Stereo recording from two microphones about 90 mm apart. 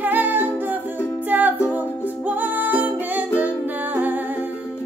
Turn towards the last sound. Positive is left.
turn(degrees=-20)  # may be behind; listen again after turning